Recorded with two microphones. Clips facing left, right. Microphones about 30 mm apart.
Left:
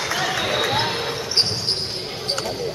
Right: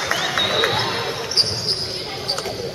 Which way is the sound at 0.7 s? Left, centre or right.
Centre.